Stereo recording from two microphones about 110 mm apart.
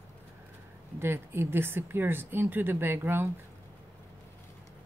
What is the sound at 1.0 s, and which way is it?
Speech, 20° right (ahead or behind).